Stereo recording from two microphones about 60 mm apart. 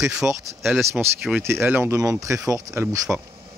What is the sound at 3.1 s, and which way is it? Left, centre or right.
Speech, right.